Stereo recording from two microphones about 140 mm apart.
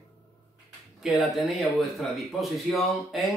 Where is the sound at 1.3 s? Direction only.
Centre (ahead or behind).